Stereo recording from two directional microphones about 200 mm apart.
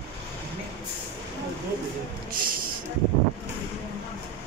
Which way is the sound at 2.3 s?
45° right (ahead or behind).